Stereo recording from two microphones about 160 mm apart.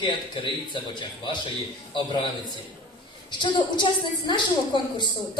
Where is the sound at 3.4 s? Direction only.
30° left (ahead or behind).